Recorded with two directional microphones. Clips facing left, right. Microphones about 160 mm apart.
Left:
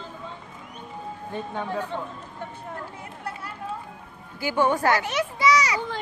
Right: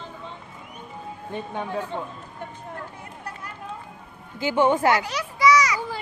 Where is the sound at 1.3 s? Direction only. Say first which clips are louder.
Right 1 dB; 15° right (ahead or behind).